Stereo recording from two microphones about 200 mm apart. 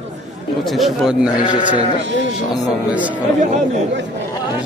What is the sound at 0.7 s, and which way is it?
Speech, centre (ahead or behind).